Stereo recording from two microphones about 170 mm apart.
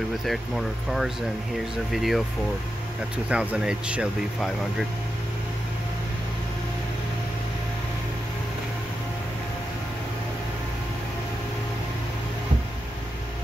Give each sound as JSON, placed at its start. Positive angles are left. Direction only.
{"t": 0.2, "sound": "speech", "side_deg": 0}
{"t": 3.3, "sound": "speech", "side_deg": -5}